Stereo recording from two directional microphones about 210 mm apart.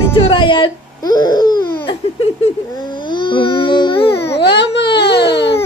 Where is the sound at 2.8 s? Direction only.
20° left (ahead or behind).